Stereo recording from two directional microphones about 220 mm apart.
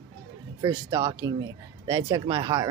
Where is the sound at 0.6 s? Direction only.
20° right (ahead or behind).